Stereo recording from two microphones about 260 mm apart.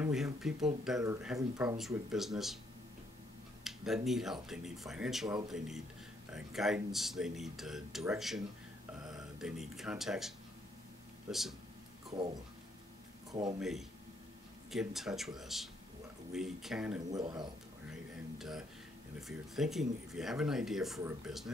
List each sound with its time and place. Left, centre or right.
0.0 s speech: centre
3.6 s speech: centre
13.3 s speech: centre
13.6 s speech: centre
17.1 s speech: centre
17.9 s a sound: centre
19.1 s speech: centre